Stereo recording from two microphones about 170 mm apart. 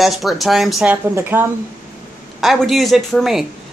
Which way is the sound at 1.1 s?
15° right (ahead or behind).